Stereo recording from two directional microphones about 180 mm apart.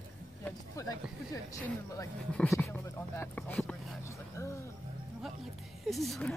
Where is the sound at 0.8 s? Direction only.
20° left (ahead or behind).